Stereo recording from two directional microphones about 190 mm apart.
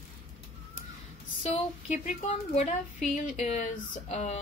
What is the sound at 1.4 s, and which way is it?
Speech, 30° left (ahead or behind).